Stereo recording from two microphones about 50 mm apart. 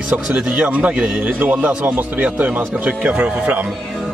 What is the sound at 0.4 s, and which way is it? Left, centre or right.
Speech, right.